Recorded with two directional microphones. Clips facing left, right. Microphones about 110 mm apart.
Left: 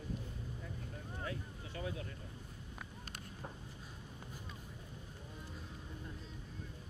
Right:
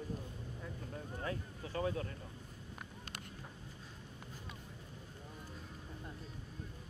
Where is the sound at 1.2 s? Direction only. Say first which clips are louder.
Right 2 dB; 45° right (ahead or behind).